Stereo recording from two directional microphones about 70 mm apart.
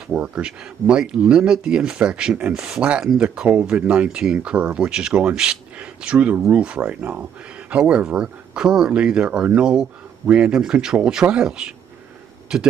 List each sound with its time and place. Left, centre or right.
0.1 s speech: centre